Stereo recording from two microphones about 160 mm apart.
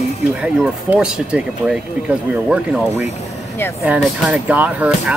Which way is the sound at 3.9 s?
5° right (ahead or behind).